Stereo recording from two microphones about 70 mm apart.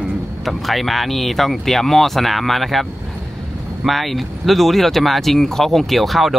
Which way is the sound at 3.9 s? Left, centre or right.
Centre.